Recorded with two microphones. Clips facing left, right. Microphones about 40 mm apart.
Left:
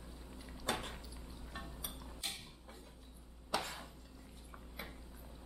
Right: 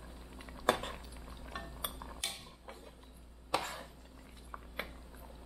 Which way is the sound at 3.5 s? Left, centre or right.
Right.